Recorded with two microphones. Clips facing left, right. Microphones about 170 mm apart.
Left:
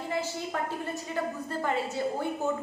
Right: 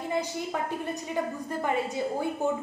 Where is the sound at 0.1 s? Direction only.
15° right (ahead or behind).